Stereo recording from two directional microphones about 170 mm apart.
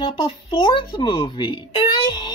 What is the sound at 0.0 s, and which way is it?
Speech, 25° left (ahead or behind).